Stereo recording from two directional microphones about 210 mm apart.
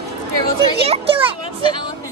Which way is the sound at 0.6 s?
25° right (ahead or behind).